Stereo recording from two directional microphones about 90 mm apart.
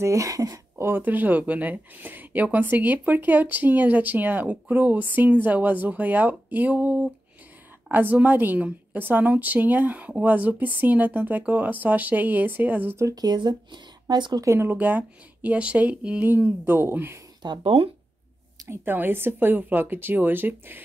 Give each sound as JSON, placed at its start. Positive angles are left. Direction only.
{"t": 0.0, "sound": "speech", "side_deg": -35}
{"t": 0.8, "sound": "speech", "side_deg": -20}
{"t": 12.9, "sound": "speech", "side_deg": -40}
{"t": 14.4, "sound": "speech", "side_deg": -30}
{"t": 17.4, "sound": "speech", "side_deg": -70}
{"t": 18.7, "sound": "speech", "side_deg": -25}